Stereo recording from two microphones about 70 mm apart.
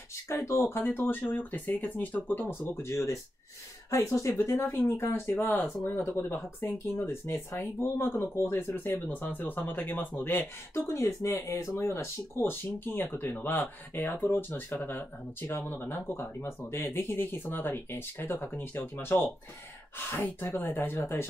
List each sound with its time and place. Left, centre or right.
0.5 s speech: left
2.7 s speech: left
4.4 s speech: left
10.9 s speech: left